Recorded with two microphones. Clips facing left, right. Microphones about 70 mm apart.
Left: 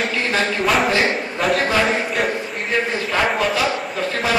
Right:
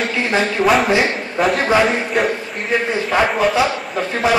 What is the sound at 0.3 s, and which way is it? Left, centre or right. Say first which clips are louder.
Speech: right 5 dB; centre.